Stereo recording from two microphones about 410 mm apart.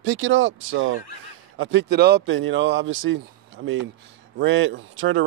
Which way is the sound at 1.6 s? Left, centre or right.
Right.